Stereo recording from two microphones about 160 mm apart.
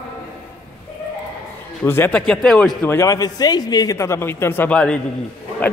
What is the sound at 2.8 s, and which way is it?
A man's voice, 20° left (ahead or behind).